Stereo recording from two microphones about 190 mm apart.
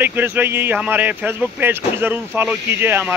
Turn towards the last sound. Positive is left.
turn(degrees=-10)  # may be behind; listen again after turning